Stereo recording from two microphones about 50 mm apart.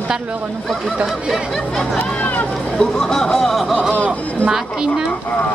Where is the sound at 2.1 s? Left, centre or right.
Left.